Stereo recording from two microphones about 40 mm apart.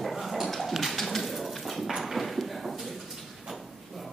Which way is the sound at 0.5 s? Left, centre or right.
Centre.